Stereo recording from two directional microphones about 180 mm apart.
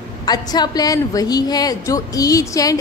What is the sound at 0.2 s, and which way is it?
A woman's voice, 25° left (ahead or behind).